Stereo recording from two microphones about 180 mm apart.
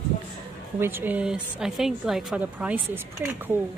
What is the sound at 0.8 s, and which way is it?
A woman's voice, 10° right (ahead or behind).